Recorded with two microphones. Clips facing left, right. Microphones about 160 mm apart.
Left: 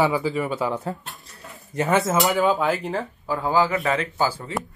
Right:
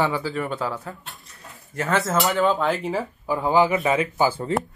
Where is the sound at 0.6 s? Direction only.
20° left (ahead or behind).